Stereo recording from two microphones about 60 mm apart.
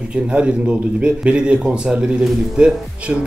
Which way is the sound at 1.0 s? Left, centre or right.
Centre.